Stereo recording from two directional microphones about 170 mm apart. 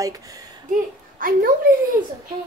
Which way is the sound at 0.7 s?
55° right (ahead or behind).